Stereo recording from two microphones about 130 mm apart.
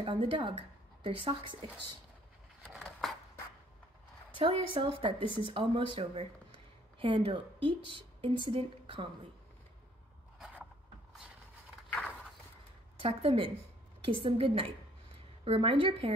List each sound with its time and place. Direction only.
0.0 s a woman's voice: 40° right (ahead or behind)
2.7 s a sound: centre (ahead or behind)
4.3 s a woman's voice: 40° right (ahead or behind)
7.0 s speech: 40° right (ahead or behind)
12.9 s a woman's voice: 45° right (ahead or behind)